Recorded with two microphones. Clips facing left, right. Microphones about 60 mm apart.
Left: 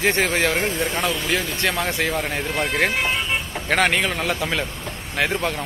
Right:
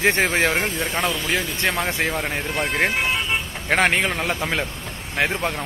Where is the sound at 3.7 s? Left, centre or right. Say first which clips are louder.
Right 1 dB; right; by 5.6 s centre.